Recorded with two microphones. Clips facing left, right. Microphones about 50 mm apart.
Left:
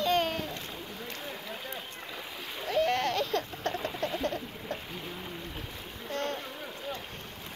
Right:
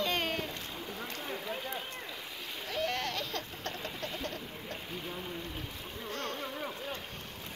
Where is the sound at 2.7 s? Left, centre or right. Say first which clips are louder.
Left 7 dB; centre.